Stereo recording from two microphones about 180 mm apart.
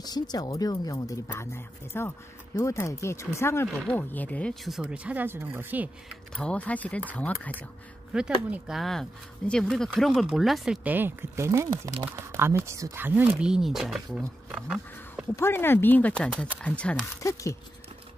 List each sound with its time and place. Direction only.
0.0 s speech: 20° left (ahead or behind); by 6.1 s 10° right (ahead or behind)
6.3 s speech: 5° left (ahead or behind)
8.1 s speech: 5° right (ahead or behind)
15.3 s speech: 15° left (ahead or behind)
17.2 s speech: 15° left (ahead or behind)